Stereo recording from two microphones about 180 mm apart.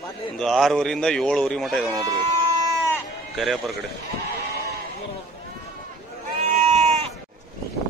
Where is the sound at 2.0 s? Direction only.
20° right (ahead or behind).